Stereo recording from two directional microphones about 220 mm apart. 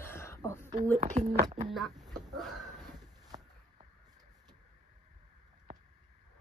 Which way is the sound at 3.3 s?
15° right (ahead or behind).